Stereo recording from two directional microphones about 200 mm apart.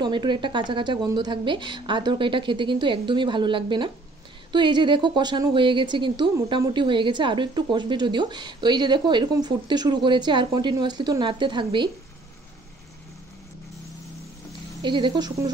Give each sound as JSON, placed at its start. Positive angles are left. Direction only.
{"t": 0.0, "sound": "a woman's voice", "side_deg": -20}
{"t": 14.8, "sound": "a woman's voice", "side_deg": -25}